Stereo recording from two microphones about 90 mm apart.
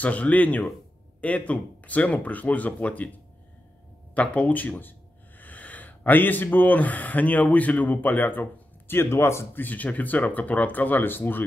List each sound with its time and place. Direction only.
0.0 s speech: 15° left (ahead or behind)
4.1 s speech: 15° left (ahead or behind)